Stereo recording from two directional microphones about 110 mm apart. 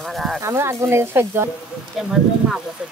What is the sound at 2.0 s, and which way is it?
Speech, centre (ahead or behind).